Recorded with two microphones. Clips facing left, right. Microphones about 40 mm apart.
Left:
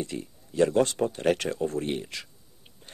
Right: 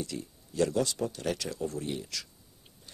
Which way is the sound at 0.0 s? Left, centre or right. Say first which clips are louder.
Left 4 dB; left.